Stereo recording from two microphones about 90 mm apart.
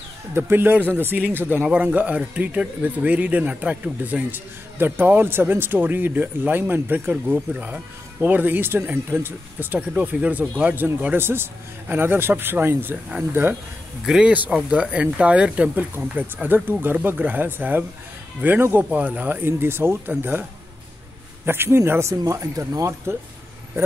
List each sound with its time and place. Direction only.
0.3 s speech: 25° right (ahead or behind)
14.0 s speech: 5° right (ahead or behind)
14.3 s speech: 15° right (ahead or behind)
21.5 s speech: 25° right (ahead or behind)